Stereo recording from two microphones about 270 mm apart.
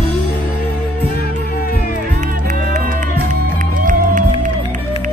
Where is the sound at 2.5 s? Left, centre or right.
Right.